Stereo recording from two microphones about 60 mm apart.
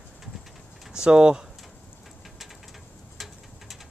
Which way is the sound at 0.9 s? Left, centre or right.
Centre.